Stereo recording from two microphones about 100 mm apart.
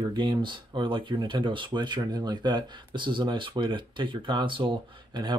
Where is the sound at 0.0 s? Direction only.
55° right (ahead or behind).